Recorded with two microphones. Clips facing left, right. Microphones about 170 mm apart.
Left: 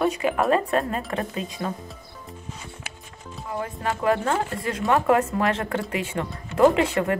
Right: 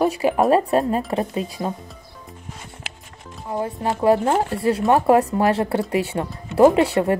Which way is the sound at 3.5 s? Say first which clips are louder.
Right 5 dB; 25° right (ahead or behind).